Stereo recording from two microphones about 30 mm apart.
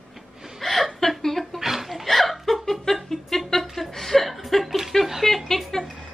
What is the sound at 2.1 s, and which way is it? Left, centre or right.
Laughter, centre.